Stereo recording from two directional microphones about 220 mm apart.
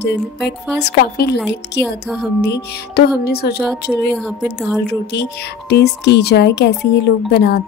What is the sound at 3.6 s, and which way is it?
Speech, centre (ahead or behind).